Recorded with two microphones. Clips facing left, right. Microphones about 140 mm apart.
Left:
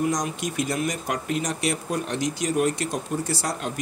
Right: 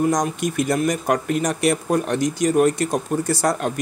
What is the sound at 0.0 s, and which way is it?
Speech, 50° right (ahead or behind).